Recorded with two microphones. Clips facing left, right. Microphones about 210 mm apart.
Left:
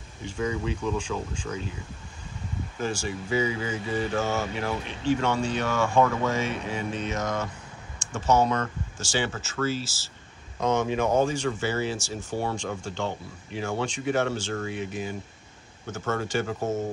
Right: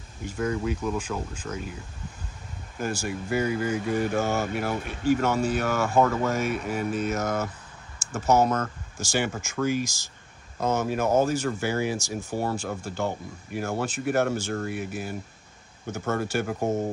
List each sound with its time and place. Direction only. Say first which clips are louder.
0.2 s speech: right 1 dB; 5° right (ahead or behind)
2.8 s speech: right 1 dB; 10° right (ahead or behind)